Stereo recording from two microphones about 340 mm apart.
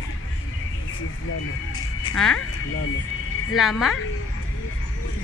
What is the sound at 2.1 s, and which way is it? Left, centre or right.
Speech, centre.